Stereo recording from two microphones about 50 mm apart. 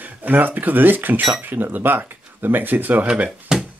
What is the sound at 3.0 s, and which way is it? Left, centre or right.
Speech, right.